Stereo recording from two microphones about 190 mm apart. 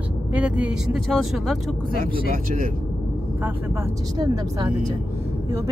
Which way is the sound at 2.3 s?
45° right (ahead or behind).